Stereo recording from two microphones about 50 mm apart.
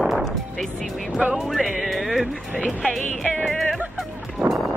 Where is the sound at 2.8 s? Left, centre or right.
Centre.